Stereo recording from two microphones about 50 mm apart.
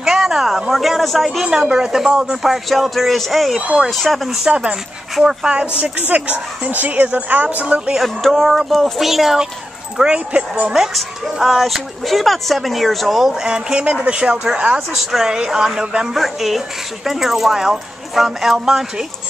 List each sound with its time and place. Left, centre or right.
0.0 s a sound: centre
1.4 s speech: centre
4.5 s speech: centre
5.9 s speech: right
8.0 s speech: centre
9.9 s speech: right
11.0 s speech: centre
13.5 s speech: centre
15.0 s speech: centre